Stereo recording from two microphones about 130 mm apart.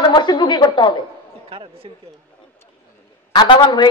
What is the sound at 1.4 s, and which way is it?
Speech, 45° right (ahead or behind).